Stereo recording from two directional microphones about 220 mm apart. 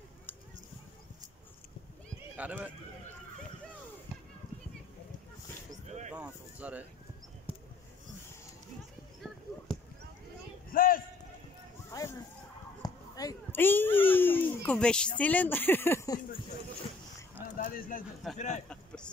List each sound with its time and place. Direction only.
2.3 s speech: 5° right (ahead or behind)
6.1 s speech: 5° right (ahead or behind)
10.7 s run: 40° left (ahead or behind)
11.9 s a sound: 15° left (ahead or behind)
12.8 s a child's voice: 15° left (ahead or behind)
17.6 s bird: 40° left (ahead or behind)
18.3 s speech: centre (ahead or behind)